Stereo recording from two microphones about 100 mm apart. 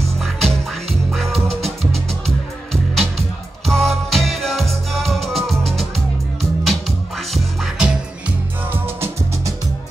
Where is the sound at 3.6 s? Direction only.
5° left (ahead or behind).